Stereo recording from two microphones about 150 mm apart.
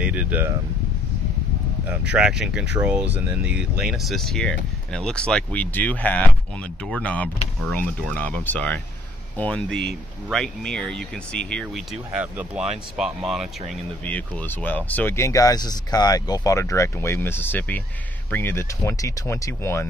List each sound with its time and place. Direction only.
0.0 s a sound: 10° right (ahead or behind)
1.9 s speech: 5° right (ahead or behind)
12.2 s speech: 10° right (ahead or behind)
14.0 s speech: 10° left (ahead or behind)